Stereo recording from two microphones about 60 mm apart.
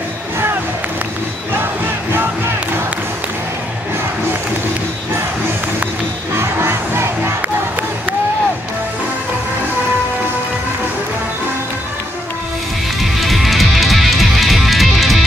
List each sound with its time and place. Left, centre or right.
6.3 s crowd: right
13.0 s music: centre